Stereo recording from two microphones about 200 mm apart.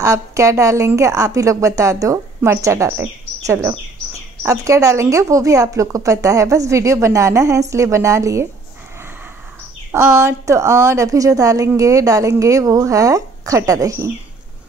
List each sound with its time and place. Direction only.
0.0 s a woman's voice: 15° right (ahead or behind)
9.9 s a woman's voice: 15° right (ahead or behind)